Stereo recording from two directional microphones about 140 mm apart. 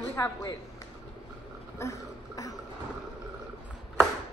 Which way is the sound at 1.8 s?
20° left (ahead or behind).